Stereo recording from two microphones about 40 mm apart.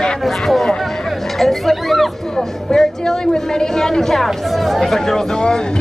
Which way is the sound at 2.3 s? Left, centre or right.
Centre.